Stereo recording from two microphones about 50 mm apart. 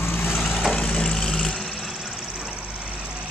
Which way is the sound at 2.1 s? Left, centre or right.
Centre.